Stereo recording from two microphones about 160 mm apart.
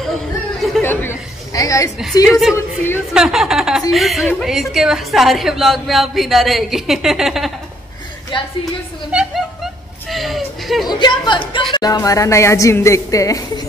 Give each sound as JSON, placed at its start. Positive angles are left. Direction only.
{"t": 0.8, "sound": "a sound", "side_deg": 15}
{"t": 2.2, "sound": "a woman's voice", "side_deg": 0}
{"t": 2.5, "sound": "speech", "side_deg": 15}
{"t": 3.1, "sound": "a woman's voice", "side_deg": -5}
{"t": 8.3, "sound": "a woman's voice", "side_deg": 30}
{"t": 9.1, "sound": "chuckle", "side_deg": -5}
{"t": 10.9, "sound": "speech", "side_deg": 30}